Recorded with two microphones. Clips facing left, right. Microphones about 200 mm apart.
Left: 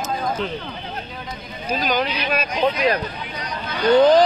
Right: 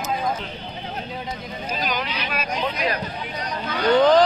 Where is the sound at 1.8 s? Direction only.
30° left (ahead or behind).